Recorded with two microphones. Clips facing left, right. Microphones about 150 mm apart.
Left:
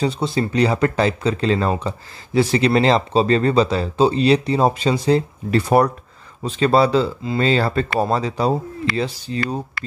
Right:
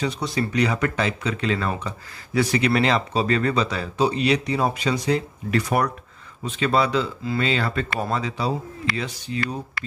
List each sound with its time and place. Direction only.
0.0 s speech: 30° left (ahead or behind)